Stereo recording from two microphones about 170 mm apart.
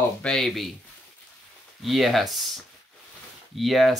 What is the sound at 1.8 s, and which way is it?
Speech, centre (ahead or behind).